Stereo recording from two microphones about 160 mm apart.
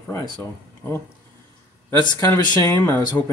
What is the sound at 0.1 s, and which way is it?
Speech, 15° left (ahead or behind).